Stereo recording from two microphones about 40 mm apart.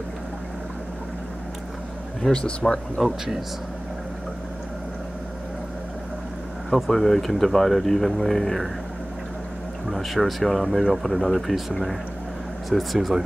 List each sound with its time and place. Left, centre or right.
2.2 s speech: left
2.6 s speech: centre
6.7 s speech: centre
9.8 s speech: centre
12.6 s speech: centre